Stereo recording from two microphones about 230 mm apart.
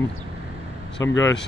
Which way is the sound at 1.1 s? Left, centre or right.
Left.